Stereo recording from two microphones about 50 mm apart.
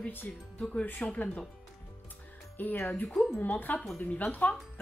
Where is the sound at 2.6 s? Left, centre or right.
Left.